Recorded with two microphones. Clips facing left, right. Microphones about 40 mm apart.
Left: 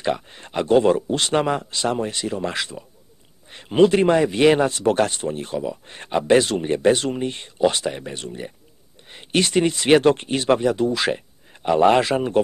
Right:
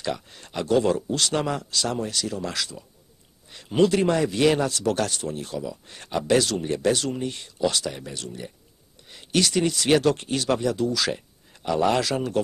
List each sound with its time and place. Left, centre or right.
0.0 s a man's voice: left